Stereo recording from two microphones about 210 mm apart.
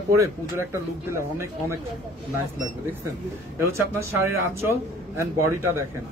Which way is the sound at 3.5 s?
15° right (ahead or behind).